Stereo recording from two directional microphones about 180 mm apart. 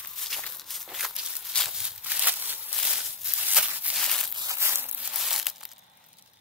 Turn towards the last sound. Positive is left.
turn(degrees=0)  # may be behind; listen again after turning